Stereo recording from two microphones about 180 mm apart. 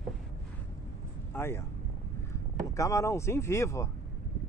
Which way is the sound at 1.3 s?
15° left (ahead or behind).